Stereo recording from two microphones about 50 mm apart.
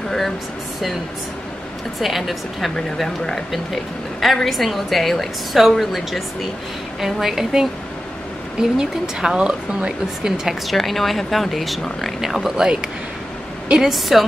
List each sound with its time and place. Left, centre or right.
2.0 s a woman's voice: centre
10.7 s a woman's voice: centre
12.5 s speech: centre
13.7 s a woman's voice: centre